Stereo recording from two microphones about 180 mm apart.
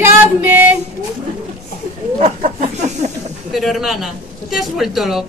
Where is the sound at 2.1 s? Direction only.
40° right (ahead or behind).